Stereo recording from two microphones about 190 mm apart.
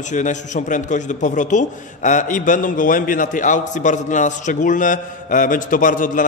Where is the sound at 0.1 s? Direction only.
40° left (ahead or behind).